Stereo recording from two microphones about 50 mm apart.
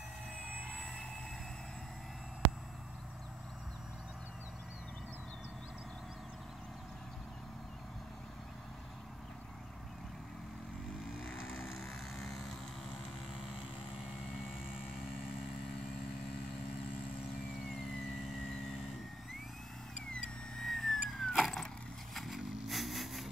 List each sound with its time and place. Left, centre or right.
0.7 s vehicle: centre
11.3 s vehicle: left
11.7 s vehicle: centre
20.1 s vehicle: centre
20.6 s vehicle: centre